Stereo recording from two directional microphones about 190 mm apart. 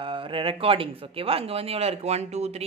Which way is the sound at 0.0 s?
25° right (ahead or behind).